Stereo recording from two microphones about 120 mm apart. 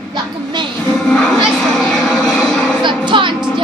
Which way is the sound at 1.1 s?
5° left (ahead or behind).